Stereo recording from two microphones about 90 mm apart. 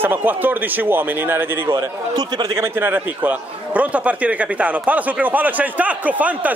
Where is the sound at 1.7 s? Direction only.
50° right (ahead or behind).